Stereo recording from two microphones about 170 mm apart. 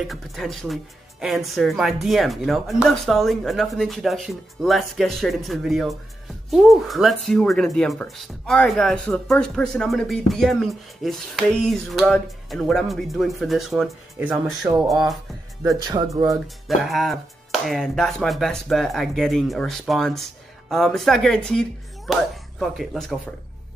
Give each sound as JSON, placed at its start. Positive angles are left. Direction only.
{"t": 0.0, "sound": "speech", "side_deg": 0}
{"t": 15.8, "sound": "speech", "side_deg": -20}
{"t": 16.3, "sound": "speech", "side_deg": 0}